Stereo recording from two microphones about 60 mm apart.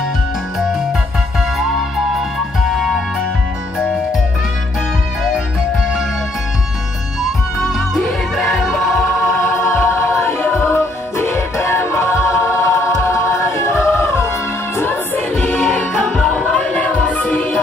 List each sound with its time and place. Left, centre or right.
2.7 s music: centre
7.6 s music: centre
9.2 s choir: left
10.4 s music: left
14.8 s music: left